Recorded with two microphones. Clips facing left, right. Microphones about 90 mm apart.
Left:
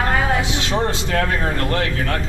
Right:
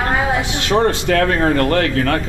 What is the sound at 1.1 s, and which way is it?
A man's voice, 60° right (ahead or behind).